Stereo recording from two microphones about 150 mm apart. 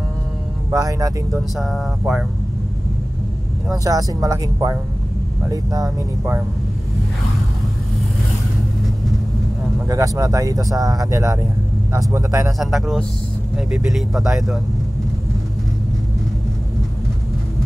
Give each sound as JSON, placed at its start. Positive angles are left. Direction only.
{"t": 0.7, "sound": "speech", "side_deg": -25}
{"t": 1.6, "sound": "speech", "side_deg": 0}
{"t": 3.7, "sound": "speech", "side_deg": -25}
{"t": 9.8, "sound": "speech", "side_deg": -20}
{"t": 12.5, "sound": "speech", "side_deg": 0}